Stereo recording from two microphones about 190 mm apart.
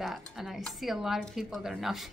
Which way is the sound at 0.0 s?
Centre (ahead or behind).